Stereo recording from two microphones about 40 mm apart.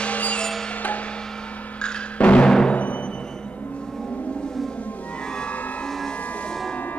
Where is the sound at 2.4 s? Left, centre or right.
Centre.